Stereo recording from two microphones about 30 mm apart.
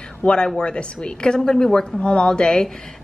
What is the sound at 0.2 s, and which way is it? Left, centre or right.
A woman's voice, left.